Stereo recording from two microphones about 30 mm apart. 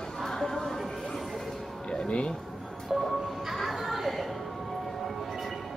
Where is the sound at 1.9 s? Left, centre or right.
Left.